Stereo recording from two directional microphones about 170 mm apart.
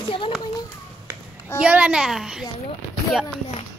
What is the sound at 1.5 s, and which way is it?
Speech, 5° right (ahead or behind).